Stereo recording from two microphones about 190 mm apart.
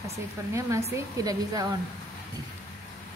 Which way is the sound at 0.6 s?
15° right (ahead or behind).